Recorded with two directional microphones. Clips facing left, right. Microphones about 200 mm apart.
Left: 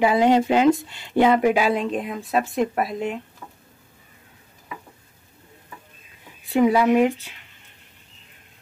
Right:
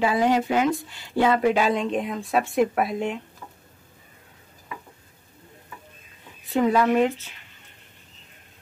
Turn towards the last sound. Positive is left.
turn(degrees=15)  # may be behind; listen again after turning